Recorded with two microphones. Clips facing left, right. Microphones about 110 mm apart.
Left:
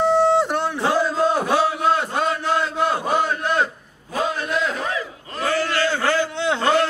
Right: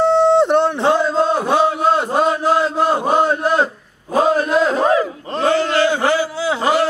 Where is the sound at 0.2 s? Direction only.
25° right (ahead or behind).